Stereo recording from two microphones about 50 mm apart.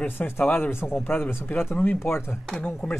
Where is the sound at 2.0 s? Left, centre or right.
Left.